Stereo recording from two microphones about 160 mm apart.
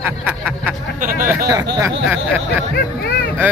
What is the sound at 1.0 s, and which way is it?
Speech, 65° right (ahead or behind).